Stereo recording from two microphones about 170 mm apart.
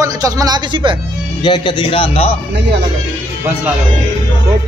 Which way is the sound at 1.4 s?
25° left (ahead or behind).